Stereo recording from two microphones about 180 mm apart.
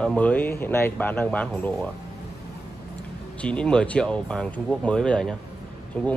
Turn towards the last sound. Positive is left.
turn(degrees=5)  # may be behind; listen again after turning